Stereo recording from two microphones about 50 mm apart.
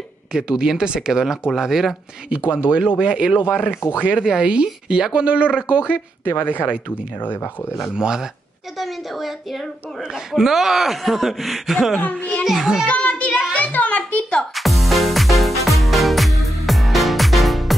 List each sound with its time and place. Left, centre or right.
0.3 s speech: centre
2.2 s speech: right
3.4 s speech: left
4.2 s speech: centre
6.3 s speech: left
7.9 s speech: centre
8.7 s a woman's voice: centre
12.0 s speech: left
12.4 s speech: centre
12.8 s a child's voice: left
14.5 s music: centre